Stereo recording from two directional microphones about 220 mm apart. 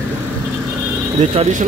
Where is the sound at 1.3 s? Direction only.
30° right (ahead or behind).